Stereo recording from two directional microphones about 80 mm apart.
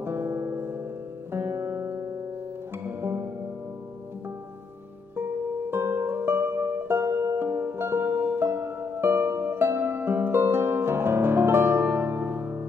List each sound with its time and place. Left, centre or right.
0.0 s music: right
5.7 s music: right